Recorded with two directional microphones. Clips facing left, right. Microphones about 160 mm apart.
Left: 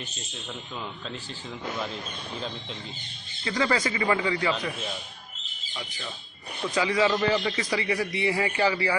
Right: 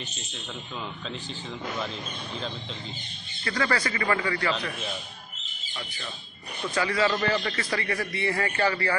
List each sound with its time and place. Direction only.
3.4 s a man's voice: 15° left (ahead or behind)
6.7 s a man's voice: 15° left (ahead or behind)